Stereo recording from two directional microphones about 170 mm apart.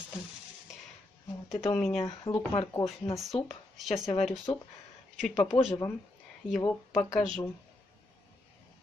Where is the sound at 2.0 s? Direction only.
30° left (ahead or behind).